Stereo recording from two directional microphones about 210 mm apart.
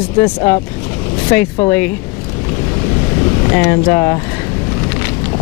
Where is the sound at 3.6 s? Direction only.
10° left (ahead or behind).